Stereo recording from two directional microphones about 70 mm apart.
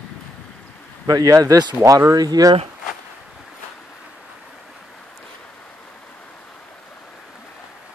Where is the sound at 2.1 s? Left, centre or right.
Right.